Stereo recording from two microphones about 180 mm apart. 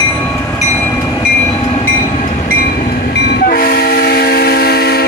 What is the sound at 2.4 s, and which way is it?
Train, 60° left (ahead or behind).